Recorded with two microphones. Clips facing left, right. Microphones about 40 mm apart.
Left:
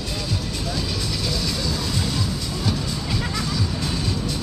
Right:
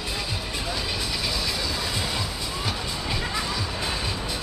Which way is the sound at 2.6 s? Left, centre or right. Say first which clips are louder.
Left 4 dB; centre.